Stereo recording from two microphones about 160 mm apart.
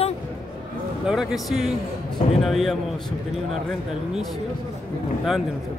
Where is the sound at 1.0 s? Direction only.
Centre (ahead or behind).